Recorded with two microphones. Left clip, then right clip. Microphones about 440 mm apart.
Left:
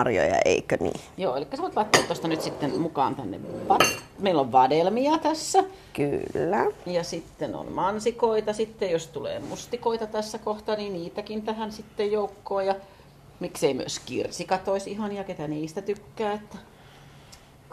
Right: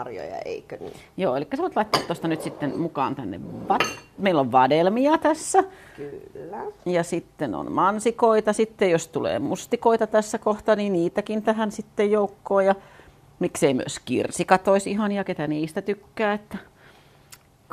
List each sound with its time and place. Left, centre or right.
0.0 s speech: left
1.1 s speech: right
6.3 s speech: left
6.9 s a woman's voice: right